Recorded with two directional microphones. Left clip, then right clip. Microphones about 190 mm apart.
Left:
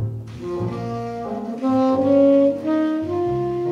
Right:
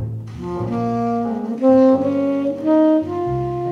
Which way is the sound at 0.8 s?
45° right (ahead or behind).